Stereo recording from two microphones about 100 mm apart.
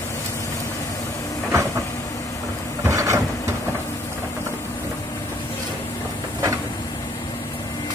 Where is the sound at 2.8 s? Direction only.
30° right (ahead or behind).